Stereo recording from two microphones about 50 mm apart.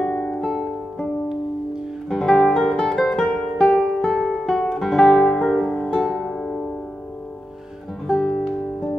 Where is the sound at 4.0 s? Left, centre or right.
Centre.